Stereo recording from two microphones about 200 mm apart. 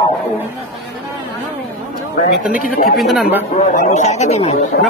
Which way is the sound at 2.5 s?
45° left (ahead or behind).